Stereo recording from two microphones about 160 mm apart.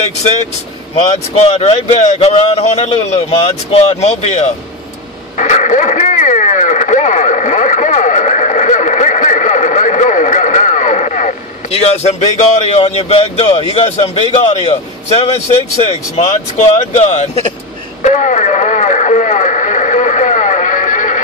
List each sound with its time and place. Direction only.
1.3 s a man's voice: 40° left (ahead or behind)
5.4 s radio: 50° left (ahead or behind)
12.7 s a man's voice: 40° left (ahead or behind)
18.0 s radio: 50° left (ahead or behind)